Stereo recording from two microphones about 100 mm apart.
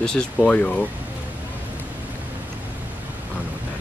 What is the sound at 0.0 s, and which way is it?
Speech, 5° left (ahead or behind).